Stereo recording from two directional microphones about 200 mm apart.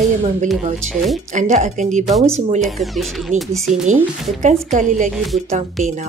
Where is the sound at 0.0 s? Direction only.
35° right (ahead or behind).